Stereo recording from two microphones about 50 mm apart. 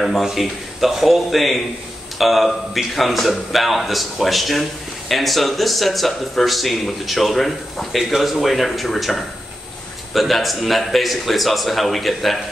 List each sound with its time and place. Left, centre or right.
0.0 s a man's voice: centre